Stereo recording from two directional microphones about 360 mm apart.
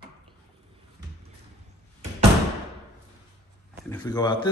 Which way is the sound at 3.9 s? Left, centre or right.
Centre.